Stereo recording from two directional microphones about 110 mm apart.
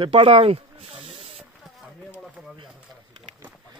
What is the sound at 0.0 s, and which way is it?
Speech, 55° right (ahead or behind).